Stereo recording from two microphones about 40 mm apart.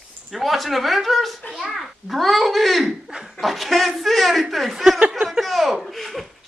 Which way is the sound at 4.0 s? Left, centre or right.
Centre.